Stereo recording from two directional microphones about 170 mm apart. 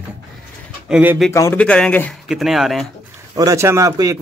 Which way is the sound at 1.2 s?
15° left (ahead or behind).